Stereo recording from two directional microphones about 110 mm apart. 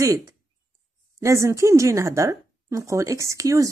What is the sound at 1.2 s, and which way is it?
A woman's voice, 25° right (ahead or behind).